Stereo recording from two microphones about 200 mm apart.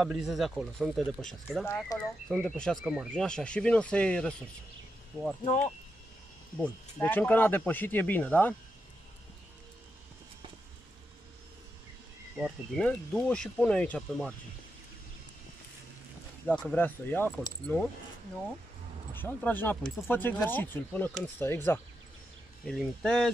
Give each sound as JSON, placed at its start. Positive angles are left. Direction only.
{"t": 0.0, "sound": "speech", "side_deg": 0}
{"t": 6.5, "sound": "speech", "side_deg": 10}
{"t": 12.4, "sound": "speech", "side_deg": 0}
{"t": 16.4, "sound": "speech", "side_deg": 5}
{"t": 19.1, "sound": "speech", "side_deg": 10}